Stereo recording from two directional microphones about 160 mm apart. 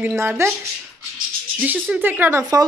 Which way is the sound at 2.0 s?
15° right (ahead or behind).